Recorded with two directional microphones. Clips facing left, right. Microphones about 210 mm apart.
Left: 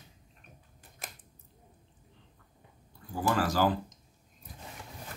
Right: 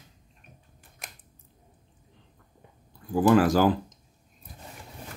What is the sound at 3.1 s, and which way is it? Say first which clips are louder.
Speech: right 9 dB; 55° right (ahead or behind).